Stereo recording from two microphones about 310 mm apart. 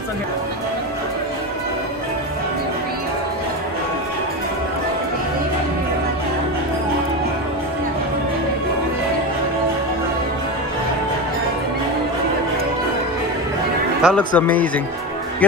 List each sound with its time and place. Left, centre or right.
14.0 s speech: centre